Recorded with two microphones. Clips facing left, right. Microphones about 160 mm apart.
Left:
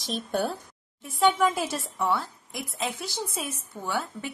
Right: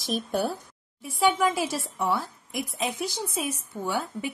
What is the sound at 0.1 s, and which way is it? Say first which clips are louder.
A woman's voice: right 1 dB; 10° right (ahead or behind).